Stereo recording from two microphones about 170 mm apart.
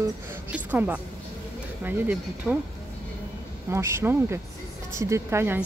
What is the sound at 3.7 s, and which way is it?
A woman's voice, 15° right (ahead or behind).